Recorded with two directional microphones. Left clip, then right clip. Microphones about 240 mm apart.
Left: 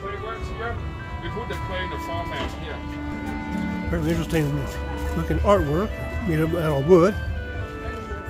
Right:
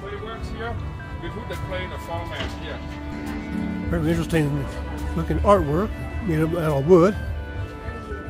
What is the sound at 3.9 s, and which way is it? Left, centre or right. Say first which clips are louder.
Speech: right 2 dB; centre.